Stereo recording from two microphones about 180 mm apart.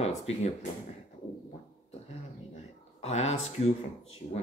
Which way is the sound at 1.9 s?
35° left (ahead or behind).